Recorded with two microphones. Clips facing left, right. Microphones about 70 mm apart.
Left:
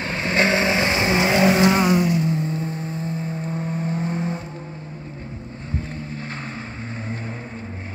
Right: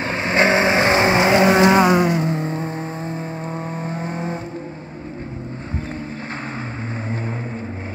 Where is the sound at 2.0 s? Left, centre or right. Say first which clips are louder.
Right 2 dB; right.